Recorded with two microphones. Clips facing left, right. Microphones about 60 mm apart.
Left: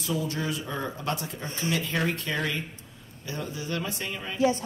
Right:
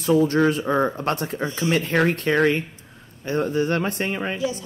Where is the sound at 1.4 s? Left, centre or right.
Right.